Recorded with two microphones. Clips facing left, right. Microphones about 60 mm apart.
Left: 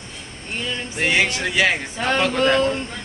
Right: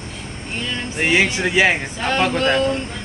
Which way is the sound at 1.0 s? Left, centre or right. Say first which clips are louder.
Right 2 dB; centre.